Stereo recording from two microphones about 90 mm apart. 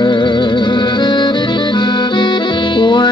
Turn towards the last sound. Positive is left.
turn(degrees=60)  # may be behind; listen again after turning